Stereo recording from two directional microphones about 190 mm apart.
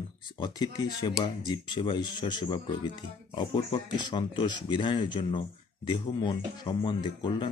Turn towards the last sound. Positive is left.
turn(degrees=25)  # may be behind; listen again after turning